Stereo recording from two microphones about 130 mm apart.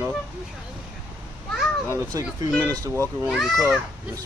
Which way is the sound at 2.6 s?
25° right (ahead or behind).